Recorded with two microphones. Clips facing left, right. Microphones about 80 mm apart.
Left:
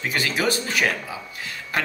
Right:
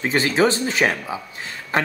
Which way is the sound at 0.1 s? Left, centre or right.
Right.